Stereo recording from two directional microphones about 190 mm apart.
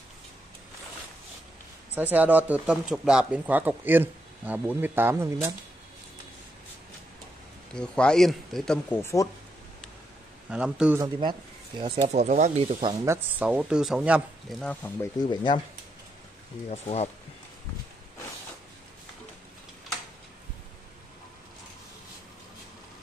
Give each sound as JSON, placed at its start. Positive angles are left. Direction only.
{"t": 2.0, "sound": "speech", "side_deg": -10}
{"t": 7.7, "sound": "speech", "side_deg": 5}
{"t": 10.5, "sound": "speech", "side_deg": -5}
{"t": 11.0, "sound": "speech", "side_deg": -25}
{"t": 13.0, "sound": "speech", "side_deg": -10}
{"t": 14.6, "sound": "speech", "side_deg": 10}
{"t": 15.2, "sound": "speech", "side_deg": 25}
{"t": 16.6, "sound": "speech", "side_deg": 35}